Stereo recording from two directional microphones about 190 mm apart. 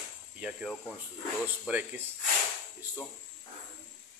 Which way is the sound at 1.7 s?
10° right (ahead or behind).